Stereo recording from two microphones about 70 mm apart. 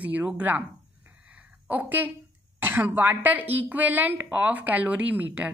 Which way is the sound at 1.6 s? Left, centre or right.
Right.